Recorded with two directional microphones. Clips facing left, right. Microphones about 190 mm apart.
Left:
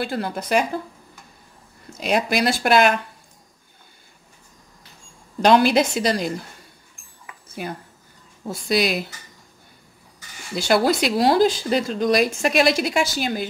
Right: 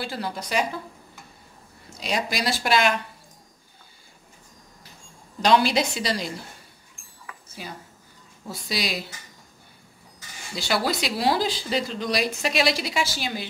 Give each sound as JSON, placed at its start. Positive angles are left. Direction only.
{"t": 0.0, "sound": "speech", "side_deg": 55}
{"t": 2.0, "sound": "speech", "side_deg": 55}
{"t": 5.4, "sound": "speech", "side_deg": 55}
{"t": 7.6, "sound": "speech", "side_deg": 55}
{"t": 10.5, "sound": "speech", "side_deg": 50}